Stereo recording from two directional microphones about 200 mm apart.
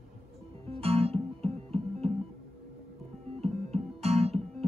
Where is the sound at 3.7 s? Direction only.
30° right (ahead or behind).